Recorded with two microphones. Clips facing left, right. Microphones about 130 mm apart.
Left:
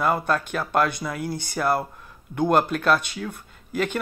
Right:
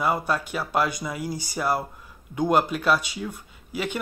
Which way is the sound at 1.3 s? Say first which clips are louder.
Left 1 dB; 55° left (ahead or behind).